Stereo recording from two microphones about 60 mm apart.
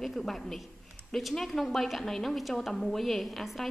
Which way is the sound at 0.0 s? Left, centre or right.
Centre.